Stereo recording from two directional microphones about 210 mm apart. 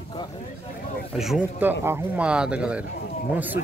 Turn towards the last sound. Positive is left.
turn(degrees=-10)  # may be behind; listen again after turning